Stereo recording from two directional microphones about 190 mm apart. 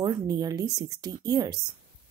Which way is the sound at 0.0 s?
20° right (ahead or behind).